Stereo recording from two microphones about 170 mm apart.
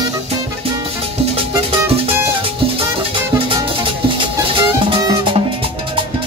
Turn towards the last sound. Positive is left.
turn(degrees=-30)  # may be behind; listen again after turning